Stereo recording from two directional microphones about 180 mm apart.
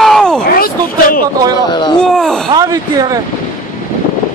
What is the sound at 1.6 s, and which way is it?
Speech, 25° left (ahead or behind).